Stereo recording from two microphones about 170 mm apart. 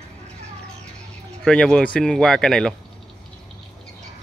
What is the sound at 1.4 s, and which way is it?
Speech, 5° left (ahead or behind).